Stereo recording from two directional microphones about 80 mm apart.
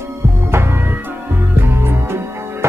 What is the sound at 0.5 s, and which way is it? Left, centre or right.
Music, right.